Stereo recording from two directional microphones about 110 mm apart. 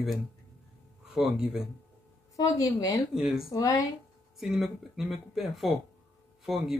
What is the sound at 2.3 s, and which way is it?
Speech, 30° left (ahead or behind).